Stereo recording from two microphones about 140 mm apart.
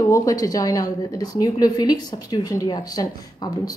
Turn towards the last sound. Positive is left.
turn(degrees=30)  # may be behind; listen again after turning